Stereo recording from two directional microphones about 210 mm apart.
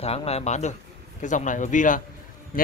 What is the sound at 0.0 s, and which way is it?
Speech, 30° left (ahead or behind).